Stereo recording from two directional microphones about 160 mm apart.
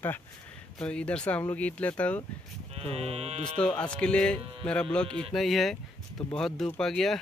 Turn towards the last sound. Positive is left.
turn(degrees=5)  # may be behind; listen again after turning